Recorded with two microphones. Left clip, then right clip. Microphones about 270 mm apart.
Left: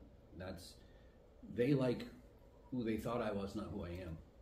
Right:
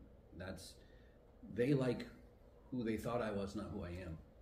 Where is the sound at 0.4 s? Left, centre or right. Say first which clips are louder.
Even; centre.